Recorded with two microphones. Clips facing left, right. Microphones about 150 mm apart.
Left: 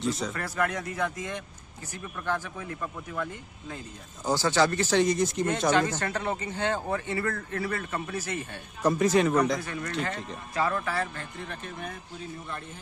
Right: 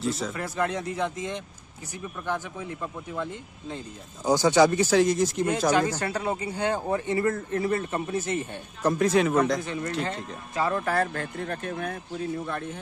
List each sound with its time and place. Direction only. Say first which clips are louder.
0.0 s speech: right 1 dB; centre (ahead or behind)
0.4 s speech: right 1 dB; 20° right (ahead or behind)
4.9 s speech: right 2 dB; centre (ahead or behind); by 8.4 s 20° right (ahead or behind)
8.8 s speech: right 1 dB; centre (ahead or behind)
9.6 s speech: right 3 dB; 25° right (ahead or behind)
10.8 s speech: right 5 dB; 50° right (ahead or behind); by 12.0 s 65° right (ahead or behind)